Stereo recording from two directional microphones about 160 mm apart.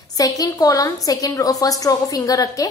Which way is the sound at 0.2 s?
20° left (ahead or behind).